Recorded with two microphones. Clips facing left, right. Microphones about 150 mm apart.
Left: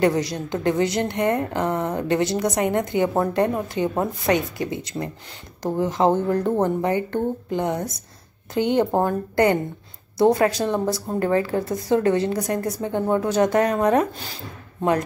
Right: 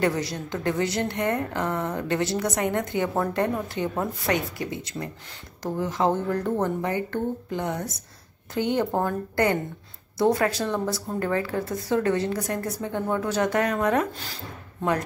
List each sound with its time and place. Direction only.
0.0 s a woman's voice: 15° left (ahead or behind)